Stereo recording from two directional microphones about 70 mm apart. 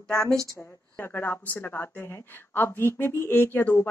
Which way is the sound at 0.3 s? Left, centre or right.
Right.